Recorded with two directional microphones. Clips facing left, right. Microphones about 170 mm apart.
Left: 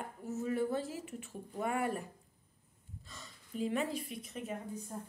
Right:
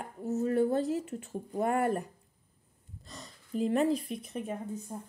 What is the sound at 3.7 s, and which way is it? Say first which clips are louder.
Speech: right 9 dB; 40° right (ahead or behind).